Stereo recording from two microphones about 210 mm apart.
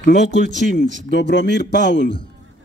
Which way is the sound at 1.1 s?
55° left (ahead or behind).